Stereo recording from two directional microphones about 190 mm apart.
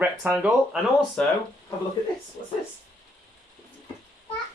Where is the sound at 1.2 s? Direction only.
5° left (ahead or behind).